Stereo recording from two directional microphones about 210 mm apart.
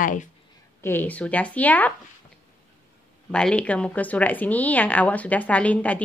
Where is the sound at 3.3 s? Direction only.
5° left (ahead or behind).